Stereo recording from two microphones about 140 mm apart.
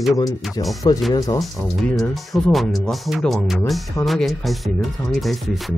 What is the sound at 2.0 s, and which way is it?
Speech, centre (ahead or behind).